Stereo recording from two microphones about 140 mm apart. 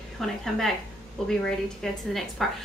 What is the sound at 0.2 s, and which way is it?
Speech, centre (ahead or behind).